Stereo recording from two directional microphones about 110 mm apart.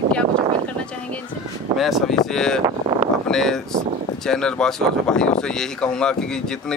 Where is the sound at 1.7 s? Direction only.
Centre (ahead or behind).